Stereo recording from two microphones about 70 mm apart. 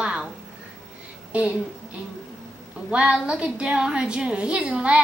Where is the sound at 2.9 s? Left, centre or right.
Centre.